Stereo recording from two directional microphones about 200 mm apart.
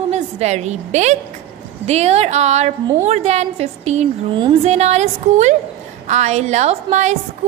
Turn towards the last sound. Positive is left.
turn(degrees=-35)  # may be behind; listen again after turning